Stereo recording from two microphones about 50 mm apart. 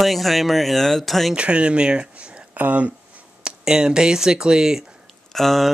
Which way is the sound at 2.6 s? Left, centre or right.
Right.